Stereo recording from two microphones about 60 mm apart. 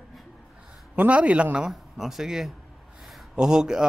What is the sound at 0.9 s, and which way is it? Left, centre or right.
Speech, right.